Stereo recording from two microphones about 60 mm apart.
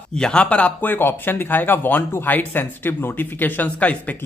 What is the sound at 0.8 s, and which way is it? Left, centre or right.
Speech, left.